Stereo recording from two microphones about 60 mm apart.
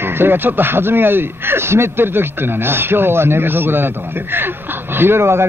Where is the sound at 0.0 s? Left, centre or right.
Right.